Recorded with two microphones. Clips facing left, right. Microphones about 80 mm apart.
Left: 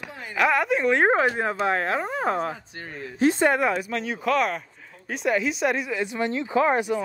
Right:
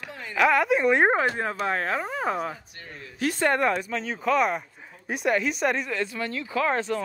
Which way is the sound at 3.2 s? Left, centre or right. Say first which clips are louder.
Left 6 dB; left.